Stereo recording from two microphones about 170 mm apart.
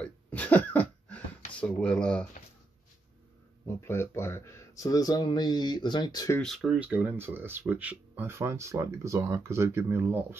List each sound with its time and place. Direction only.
0.0 s cough: 10° left (ahead or behind)
1.6 s speech: 5° left (ahead or behind)
3.6 s speech: 15° left (ahead or behind)
6.3 s speech: centre (ahead or behind); by 10.2 s 15° right (ahead or behind)